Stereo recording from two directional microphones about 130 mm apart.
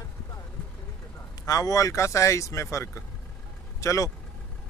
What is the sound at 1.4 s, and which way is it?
Speech, 25° left (ahead or behind).